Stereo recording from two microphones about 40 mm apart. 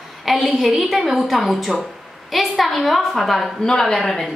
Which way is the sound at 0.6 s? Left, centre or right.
Centre.